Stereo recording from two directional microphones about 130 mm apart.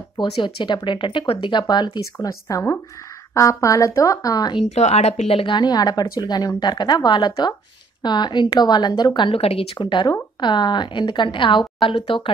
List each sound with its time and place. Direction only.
0.2 s speech: 35° left (ahead or behind)
4.7 s speech: 55° left (ahead or behind)